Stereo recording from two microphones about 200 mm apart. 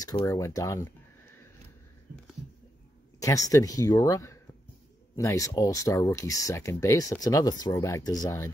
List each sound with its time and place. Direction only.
0.0 s speech: 15° left (ahead or behind)
3.2 s speech: 15° left (ahead or behind)